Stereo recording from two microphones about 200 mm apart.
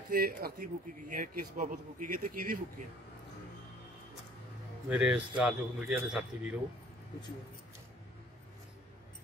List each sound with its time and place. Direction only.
0.1 s a man's voice: 45° right (ahead or behind)
4.8 s a man's voice: 5° right (ahead or behind)